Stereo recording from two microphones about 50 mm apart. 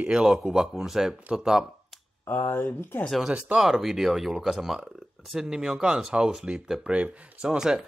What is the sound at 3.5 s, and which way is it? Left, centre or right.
Speech, centre.